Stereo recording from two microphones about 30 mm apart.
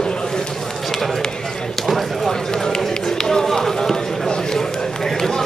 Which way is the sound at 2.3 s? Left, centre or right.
Centre.